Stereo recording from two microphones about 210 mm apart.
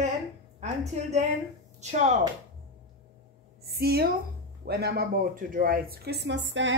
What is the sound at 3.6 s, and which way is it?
A woman's voice, 50° right (ahead or behind).